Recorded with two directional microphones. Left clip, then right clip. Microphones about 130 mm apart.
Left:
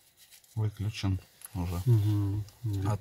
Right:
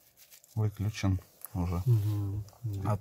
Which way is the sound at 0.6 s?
25° right (ahead or behind).